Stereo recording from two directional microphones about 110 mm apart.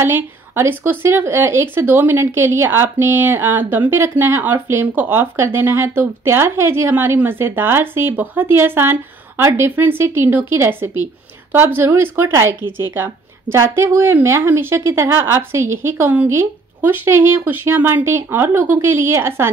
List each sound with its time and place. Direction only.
0.0 s speech: 20° right (ahead or behind)